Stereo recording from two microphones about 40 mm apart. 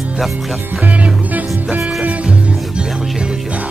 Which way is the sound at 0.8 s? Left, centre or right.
Right.